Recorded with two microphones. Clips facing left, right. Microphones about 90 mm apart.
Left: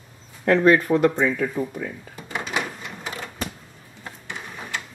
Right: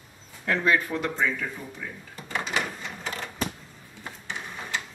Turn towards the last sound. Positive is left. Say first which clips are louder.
# left 1 dB
turn(degrees=5)  # may be behind; listen again after turning